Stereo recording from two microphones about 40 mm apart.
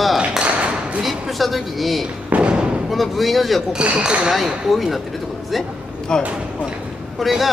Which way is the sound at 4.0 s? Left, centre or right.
Right.